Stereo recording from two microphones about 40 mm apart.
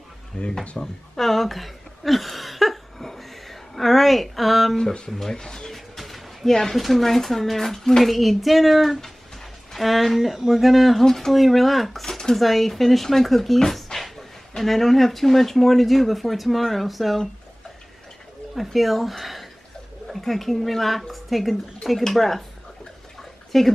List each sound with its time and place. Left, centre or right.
0.3 s speech: left
0.7 s a sound: centre
5.3 s speech: centre
5.9 s a sound: centre
6.8 s speech: centre
13.6 s a sound: centre
14.6 s speech: centre
18.5 s a woman's voice: centre
23.5 s speech: centre